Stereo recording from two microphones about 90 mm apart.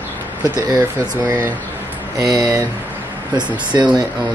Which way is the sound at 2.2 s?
40° right (ahead or behind).